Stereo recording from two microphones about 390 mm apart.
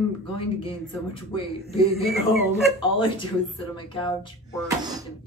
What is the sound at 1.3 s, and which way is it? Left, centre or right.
Speech, centre.